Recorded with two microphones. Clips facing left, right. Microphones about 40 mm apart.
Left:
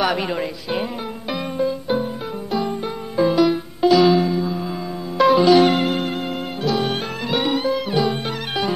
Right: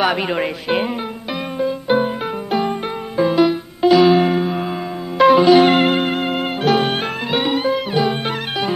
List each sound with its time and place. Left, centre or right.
0.0 s speech: right
0.4 s speech: right
1.9 s music: right
3.2 s music: centre
4.1 s music: right
5.1 s music: centre
5.7 s music: right
6.9 s music: right